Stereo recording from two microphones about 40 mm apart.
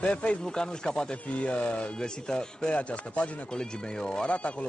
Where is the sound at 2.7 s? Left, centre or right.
Left.